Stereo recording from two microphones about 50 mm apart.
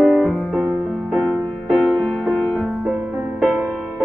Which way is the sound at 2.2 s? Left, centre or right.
Left.